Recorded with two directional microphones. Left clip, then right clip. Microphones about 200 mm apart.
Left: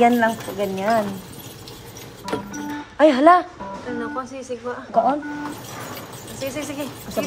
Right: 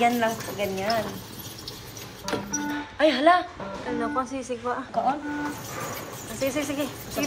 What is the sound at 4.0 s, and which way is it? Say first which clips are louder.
Speech: right 1 dB; centre (ahead or behind).